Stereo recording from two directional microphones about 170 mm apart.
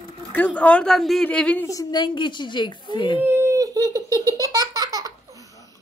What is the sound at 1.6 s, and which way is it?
A woman's voice, 20° left (ahead or behind).